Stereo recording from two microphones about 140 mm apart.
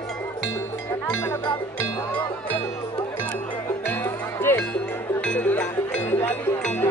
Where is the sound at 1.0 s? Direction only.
15° left (ahead or behind).